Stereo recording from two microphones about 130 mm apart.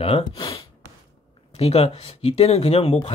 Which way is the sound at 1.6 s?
50° left (ahead or behind).